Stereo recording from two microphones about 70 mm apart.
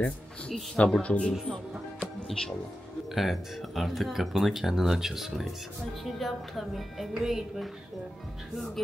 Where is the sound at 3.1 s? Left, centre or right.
Centre.